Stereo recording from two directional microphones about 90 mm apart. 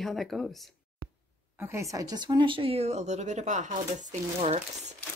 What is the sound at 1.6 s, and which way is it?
Speech, 35° right (ahead or behind).